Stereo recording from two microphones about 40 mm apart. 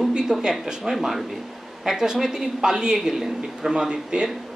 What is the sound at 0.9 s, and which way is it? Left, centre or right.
Speech, centre.